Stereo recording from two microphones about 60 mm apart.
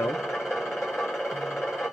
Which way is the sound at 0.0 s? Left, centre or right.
Centre.